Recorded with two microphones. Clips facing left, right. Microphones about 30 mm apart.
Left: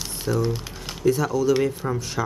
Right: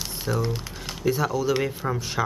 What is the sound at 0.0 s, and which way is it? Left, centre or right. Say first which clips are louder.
Speech: left 3 dB; centre.